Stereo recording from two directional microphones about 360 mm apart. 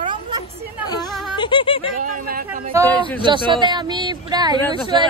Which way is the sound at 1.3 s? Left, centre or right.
Centre.